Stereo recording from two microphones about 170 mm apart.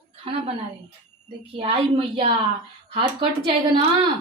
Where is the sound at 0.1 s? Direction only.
35° right (ahead or behind).